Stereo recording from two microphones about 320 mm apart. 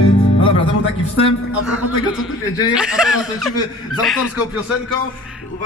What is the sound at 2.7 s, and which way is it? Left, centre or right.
Speech, centre.